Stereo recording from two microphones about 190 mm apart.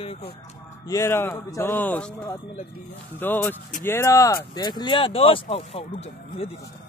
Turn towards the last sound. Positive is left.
turn(degrees=30)  # may be behind; listen again after turning